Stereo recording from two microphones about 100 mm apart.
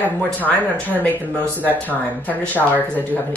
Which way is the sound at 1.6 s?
15° left (ahead or behind).